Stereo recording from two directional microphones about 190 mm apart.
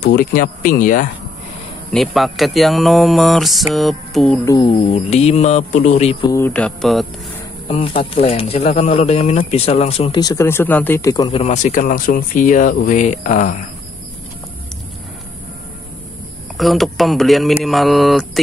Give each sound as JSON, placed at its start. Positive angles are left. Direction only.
{"t": 0.0, "sound": "speech", "side_deg": 50}
{"t": 1.9, "sound": "speech", "side_deg": 0}
{"t": 4.6, "sound": "speech", "side_deg": 35}
{"t": 6.3, "sound": "speech", "side_deg": 10}
{"t": 7.6, "sound": "speech", "side_deg": 30}
{"t": 11.4, "sound": "speech", "side_deg": 40}
{"t": 16.5, "sound": "speech", "side_deg": 0}